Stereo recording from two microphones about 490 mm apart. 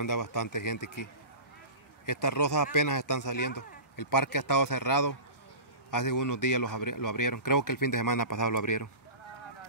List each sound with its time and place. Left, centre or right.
0.0 s speech: left
2.0 s speech: left